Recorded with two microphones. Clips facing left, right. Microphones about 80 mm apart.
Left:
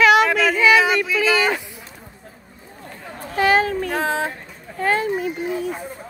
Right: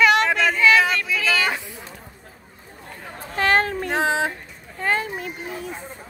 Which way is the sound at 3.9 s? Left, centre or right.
Centre.